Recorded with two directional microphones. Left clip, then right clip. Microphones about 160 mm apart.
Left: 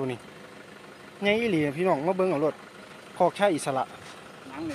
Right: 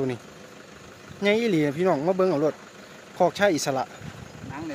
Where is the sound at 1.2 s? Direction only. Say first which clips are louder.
Right 2 dB; 20° right (ahead or behind).